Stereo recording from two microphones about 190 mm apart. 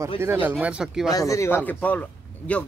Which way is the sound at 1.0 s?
20° left (ahead or behind).